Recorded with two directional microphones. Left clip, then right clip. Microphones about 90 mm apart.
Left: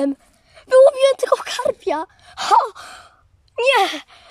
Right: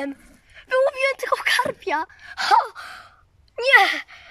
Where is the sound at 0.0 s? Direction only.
50° left (ahead or behind).